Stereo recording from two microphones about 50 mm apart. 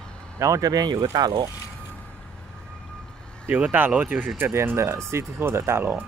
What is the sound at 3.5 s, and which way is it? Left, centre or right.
Speech, right.